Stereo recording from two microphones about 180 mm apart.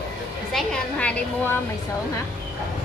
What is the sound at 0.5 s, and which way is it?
Speech, centre (ahead or behind).